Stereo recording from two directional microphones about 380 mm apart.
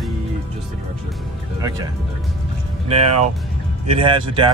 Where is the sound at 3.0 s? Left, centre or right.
Right.